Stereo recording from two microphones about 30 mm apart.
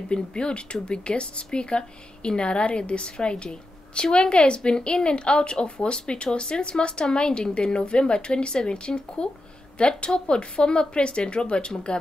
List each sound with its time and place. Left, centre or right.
0.1 s a woman's voice: left